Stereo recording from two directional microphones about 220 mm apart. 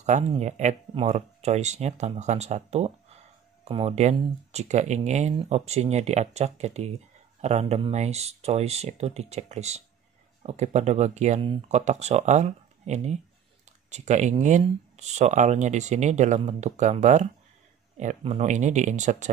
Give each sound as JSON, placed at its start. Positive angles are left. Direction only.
{"t": 0.0, "sound": "speech", "side_deg": -30}